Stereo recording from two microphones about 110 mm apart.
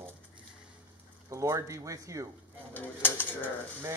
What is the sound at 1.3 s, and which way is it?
Speech, 30° right (ahead or behind).